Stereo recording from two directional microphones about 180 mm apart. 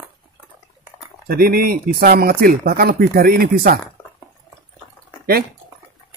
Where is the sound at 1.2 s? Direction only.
55° right (ahead or behind).